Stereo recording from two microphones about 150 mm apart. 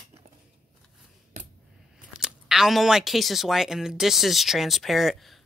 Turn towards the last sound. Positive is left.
turn(degrees=0)  # may be behind; listen again after turning